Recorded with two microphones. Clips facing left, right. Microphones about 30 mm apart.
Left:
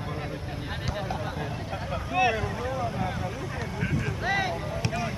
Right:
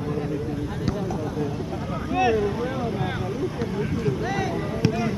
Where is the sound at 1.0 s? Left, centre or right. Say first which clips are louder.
Right 5 dB; left.